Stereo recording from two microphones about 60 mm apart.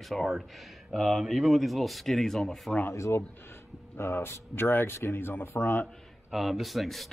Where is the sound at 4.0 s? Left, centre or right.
Left.